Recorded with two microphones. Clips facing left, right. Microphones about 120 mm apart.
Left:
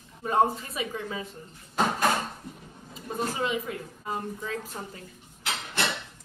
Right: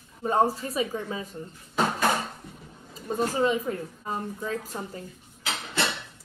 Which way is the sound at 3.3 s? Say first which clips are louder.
Right 5 dB; 40° right (ahead or behind).